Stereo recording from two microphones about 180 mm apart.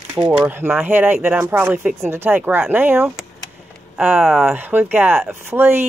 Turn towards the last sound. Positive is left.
turn(degrees=-10)  # may be behind; listen again after turning